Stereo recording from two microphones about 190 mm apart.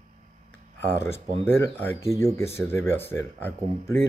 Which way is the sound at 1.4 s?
10° left (ahead or behind).